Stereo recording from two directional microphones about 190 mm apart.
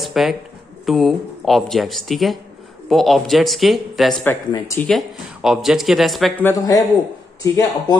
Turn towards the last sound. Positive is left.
turn(degrees=15)  # may be behind; listen again after turning